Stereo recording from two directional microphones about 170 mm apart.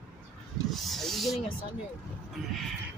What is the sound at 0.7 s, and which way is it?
Snake, centre (ahead or behind).